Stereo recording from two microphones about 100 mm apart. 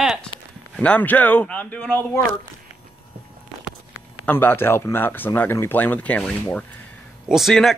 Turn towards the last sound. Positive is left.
turn(degrees=0)  # may be behind; listen again after turning